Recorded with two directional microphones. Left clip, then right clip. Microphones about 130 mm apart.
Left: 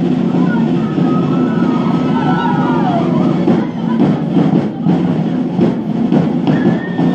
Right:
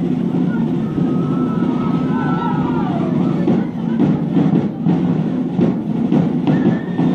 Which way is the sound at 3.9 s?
15° left (ahead or behind).